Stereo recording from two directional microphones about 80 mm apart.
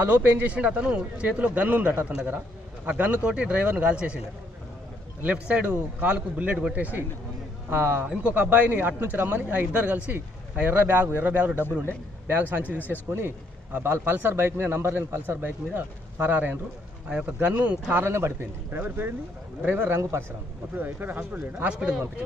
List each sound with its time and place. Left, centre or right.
0.0 s a man's voice: right
5.2 s a man's voice: centre
13.7 s speech: right
20.0 s a man's voice: right
20.7 s speech: right
21.7 s a man's voice: centre